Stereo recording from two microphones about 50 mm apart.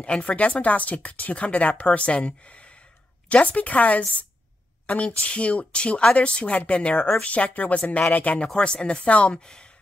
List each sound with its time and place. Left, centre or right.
0.0 s speech: left
8.5 s speech: centre